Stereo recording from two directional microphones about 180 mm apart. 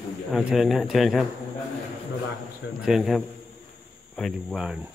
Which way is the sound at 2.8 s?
Centre (ahead or behind).